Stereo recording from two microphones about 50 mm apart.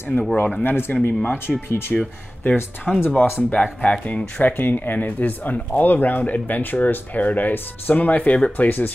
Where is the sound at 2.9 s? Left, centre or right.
Centre.